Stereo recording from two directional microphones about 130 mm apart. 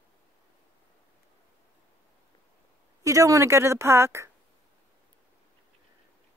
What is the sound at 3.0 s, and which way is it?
Speech, 25° right (ahead or behind).